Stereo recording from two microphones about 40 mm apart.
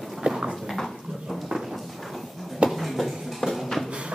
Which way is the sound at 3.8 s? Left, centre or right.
Right.